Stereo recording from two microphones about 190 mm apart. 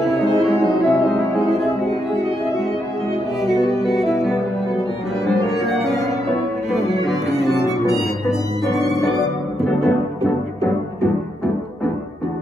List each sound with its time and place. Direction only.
0.0 s music: centre (ahead or behind)
1.1 s music: 20° left (ahead or behind)
3.8 s music: centre (ahead or behind)
6.7 s cello: centre (ahead or behind)
9.2 s music: centre (ahead or behind)